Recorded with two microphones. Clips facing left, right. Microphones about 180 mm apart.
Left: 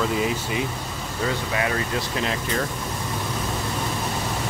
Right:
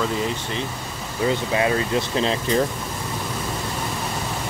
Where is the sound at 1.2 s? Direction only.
25° right (ahead or behind).